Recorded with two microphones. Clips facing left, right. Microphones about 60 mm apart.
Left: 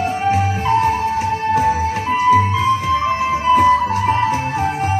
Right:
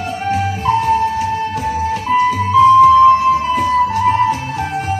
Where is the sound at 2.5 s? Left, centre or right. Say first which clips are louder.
Right 10 dB; left.